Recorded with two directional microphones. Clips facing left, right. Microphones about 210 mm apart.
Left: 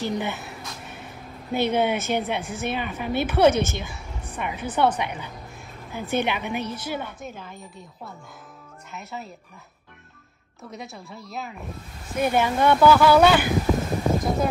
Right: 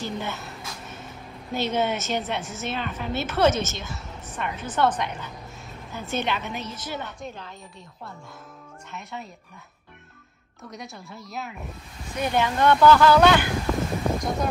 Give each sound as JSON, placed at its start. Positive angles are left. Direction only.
{"t": 0.0, "sound": "a woman's voice", "side_deg": 15}
{"t": 0.6, "sound": "a sound", "side_deg": 0}
{"t": 1.5, "sound": "a woman's voice", "side_deg": 15}
{"t": 8.9, "sound": "a woman's voice", "side_deg": 0}
{"t": 10.7, "sound": "a woman's voice", "side_deg": 0}